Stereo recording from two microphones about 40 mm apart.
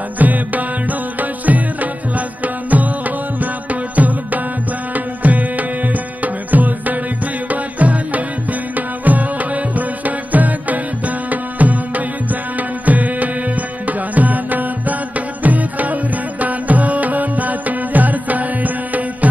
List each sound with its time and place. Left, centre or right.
0.2 s music: right
3.9 s music: right